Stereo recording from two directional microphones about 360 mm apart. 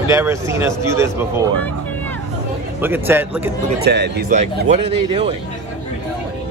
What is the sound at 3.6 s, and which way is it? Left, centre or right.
Speech, right.